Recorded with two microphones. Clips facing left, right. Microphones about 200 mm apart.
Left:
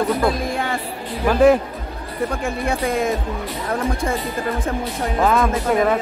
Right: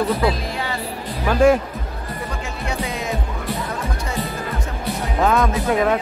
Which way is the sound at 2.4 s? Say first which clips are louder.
Left 4 dB; 55° left (ahead or behind).